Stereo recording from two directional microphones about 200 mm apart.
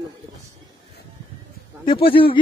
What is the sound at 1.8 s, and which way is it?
Speech, 25° left (ahead or behind).